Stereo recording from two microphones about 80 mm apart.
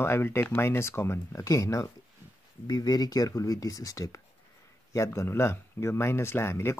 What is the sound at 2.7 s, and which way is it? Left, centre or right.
Speech, left.